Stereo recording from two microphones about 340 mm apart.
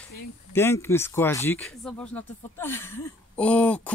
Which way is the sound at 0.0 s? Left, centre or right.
Centre.